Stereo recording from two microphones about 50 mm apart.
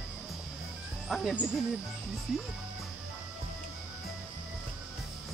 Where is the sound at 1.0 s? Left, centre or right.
Centre.